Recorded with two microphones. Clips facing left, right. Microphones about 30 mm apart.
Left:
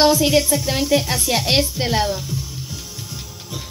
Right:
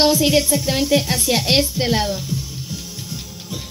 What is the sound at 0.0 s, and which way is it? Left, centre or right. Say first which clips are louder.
Speech: left 1 dB; right.